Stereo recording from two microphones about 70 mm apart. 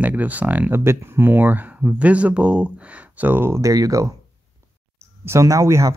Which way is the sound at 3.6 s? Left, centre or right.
Right.